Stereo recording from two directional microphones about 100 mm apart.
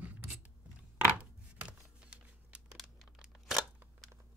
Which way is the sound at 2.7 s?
Centre (ahead or behind).